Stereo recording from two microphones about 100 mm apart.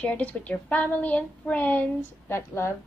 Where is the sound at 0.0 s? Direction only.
15° left (ahead or behind).